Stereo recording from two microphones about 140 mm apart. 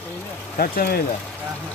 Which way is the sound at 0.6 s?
90° left.